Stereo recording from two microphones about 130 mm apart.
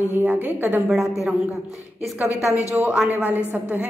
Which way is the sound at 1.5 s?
Centre (ahead or behind).